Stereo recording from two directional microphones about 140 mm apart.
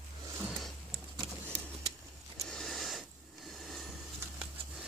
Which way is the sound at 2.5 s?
5° left (ahead or behind).